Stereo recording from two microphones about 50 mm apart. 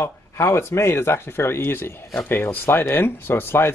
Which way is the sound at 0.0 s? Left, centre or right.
Left.